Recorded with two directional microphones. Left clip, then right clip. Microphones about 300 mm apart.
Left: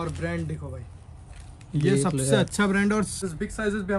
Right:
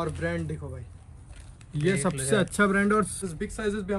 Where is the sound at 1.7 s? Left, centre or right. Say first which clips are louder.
Left 3 dB; centre.